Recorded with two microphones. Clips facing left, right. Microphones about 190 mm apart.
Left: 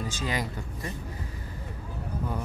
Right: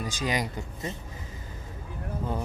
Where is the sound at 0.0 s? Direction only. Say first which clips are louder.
Right 2 dB; 15° right (ahead or behind).